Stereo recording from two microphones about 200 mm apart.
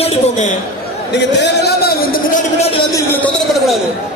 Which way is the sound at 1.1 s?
60° left (ahead or behind).